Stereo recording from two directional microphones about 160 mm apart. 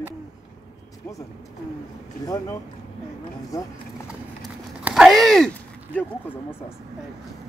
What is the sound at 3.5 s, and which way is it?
Speech, 20° left (ahead or behind).